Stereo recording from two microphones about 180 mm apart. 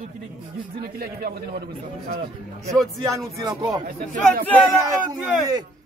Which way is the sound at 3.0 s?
20° right (ahead or behind).